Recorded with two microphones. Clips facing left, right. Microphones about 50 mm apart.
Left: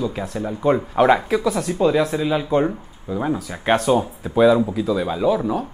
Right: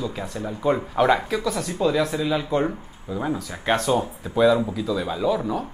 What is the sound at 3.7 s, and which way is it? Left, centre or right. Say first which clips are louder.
Speech: left 4 dB; left.